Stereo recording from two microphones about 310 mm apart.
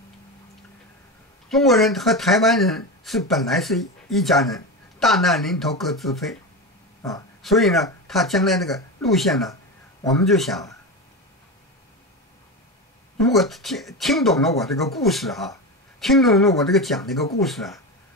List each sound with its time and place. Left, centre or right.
1.5 s speech: centre
7.4 s speech: centre
13.2 s speech: centre